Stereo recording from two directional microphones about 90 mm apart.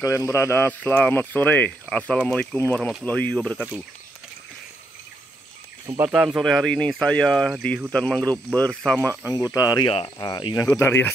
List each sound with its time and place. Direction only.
0.0 s speech: 30° left (ahead or behind); by 3.6 s 15° left (ahead or behind)
5.9 s speech: 15° right (ahead or behind)
6.3 s speech: centre (ahead or behind); by 9.1 s 15° left (ahead or behind)
9.3 s speech: 40° left (ahead or behind)
9.8 s speech: 75° left (ahead or behind)
10.1 s speech: 50° left (ahead or behind)
10.5 s speech: 30° left (ahead or behind)